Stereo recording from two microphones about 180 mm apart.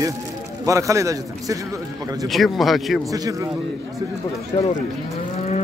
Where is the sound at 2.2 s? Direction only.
Centre (ahead or behind).